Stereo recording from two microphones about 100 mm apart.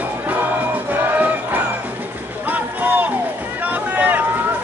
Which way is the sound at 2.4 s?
15° right (ahead or behind).